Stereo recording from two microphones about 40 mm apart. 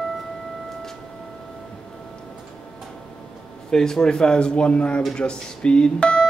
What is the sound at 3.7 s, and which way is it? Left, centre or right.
Speech, centre.